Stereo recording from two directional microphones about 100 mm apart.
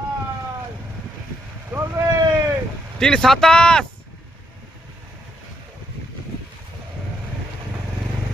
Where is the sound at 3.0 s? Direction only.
5° left (ahead or behind).